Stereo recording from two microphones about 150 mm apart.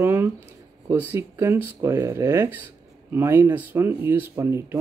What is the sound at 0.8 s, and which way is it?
Speech, 15° right (ahead or behind).